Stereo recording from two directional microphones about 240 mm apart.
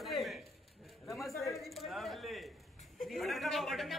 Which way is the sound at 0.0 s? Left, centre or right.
Centre.